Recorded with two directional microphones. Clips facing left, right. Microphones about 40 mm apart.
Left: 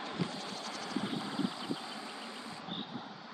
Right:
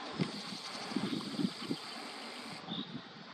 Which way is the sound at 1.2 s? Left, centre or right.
Left.